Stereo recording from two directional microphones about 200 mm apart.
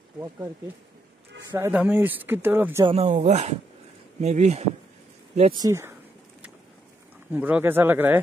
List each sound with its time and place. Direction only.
1.5 s speech: 10° right (ahead or behind)
2.8 s speech: 30° right (ahead or behind)
5.6 s speech: 15° right (ahead or behind)
7.3 s speech: 10° right (ahead or behind)